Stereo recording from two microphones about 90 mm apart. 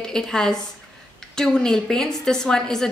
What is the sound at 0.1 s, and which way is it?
A woman's voice, 5° left (ahead or behind).